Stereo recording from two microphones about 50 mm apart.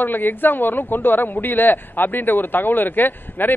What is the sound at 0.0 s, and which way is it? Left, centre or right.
Speech, left.